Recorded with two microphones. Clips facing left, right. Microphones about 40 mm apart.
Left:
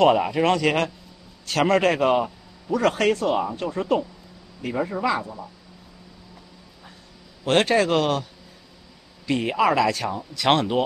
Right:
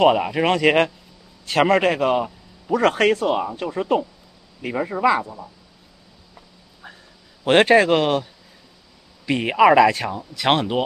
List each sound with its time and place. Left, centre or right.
0.0 s speech: centre
0.4 s speech: right
2.0 s a man's voice: centre
3.0 s speech: centre
5.2 s a man's voice: centre
7.4 s speech: right
10.1 s speech: centre